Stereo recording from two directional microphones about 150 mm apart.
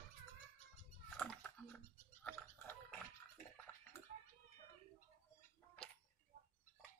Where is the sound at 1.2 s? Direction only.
10° left (ahead or behind).